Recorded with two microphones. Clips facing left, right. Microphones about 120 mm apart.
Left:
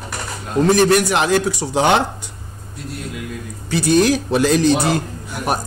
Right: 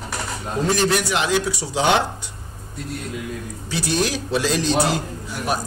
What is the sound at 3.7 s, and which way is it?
A man's voice, 55° left (ahead or behind).